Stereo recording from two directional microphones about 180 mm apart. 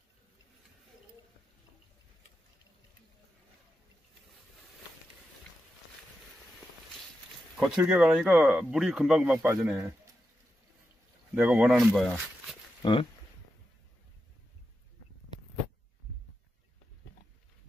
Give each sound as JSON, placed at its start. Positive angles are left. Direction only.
{"t": 6.9, "sound": "speech", "side_deg": 0}
{"t": 11.3, "sound": "speech", "side_deg": -5}
{"t": 12.8, "sound": "speech", "side_deg": 25}